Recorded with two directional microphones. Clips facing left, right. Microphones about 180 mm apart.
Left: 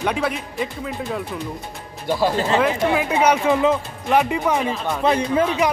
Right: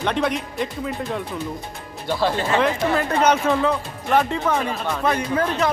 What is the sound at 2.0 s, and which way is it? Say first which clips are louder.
A man's voice: left 2 dB; 10° left (ahead or behind).